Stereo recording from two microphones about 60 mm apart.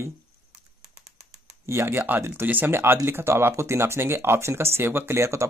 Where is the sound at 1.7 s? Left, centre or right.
Right.